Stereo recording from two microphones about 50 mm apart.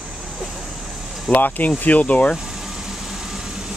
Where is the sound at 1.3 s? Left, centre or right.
Left.